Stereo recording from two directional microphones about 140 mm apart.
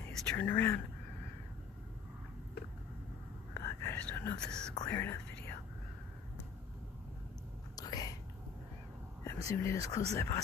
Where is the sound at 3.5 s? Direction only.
20° left (ahead or behind).